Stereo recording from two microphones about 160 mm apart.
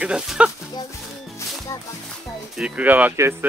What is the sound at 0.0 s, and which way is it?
Speech, 5° right (ahead or behind).